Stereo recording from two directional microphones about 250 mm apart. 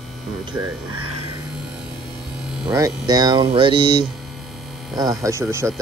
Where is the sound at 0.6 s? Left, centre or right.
Centre.